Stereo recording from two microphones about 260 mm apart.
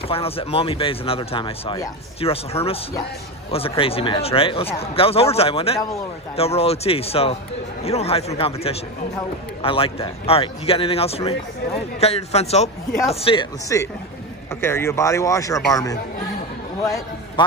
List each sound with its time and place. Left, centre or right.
0.1 s a man's voice: left